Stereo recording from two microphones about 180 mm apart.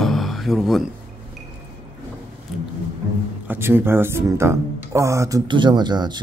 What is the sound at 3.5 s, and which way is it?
Speech, 10° right (ahead or behind).